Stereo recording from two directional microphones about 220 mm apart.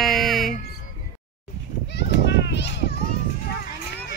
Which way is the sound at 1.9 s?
50° left (ahead or behind).